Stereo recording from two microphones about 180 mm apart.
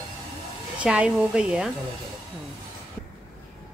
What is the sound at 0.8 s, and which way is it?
Speech, 5° right (ahead or behind).